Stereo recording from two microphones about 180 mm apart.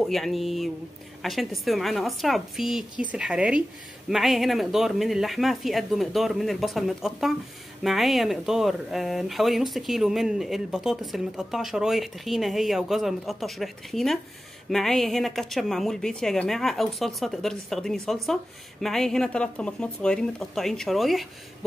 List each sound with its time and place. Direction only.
0.0 s speech: centre (ahead or behind)